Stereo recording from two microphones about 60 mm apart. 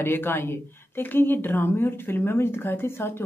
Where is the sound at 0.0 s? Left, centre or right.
Left.